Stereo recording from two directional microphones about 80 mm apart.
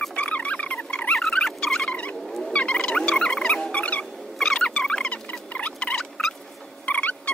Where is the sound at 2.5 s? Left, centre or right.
Centre.